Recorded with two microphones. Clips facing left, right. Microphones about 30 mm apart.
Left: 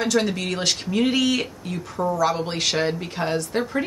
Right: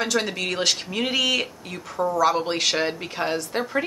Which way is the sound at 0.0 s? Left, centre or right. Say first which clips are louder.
Left 2 dB; centre.